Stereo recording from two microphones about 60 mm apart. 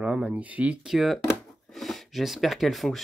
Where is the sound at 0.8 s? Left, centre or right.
Centre.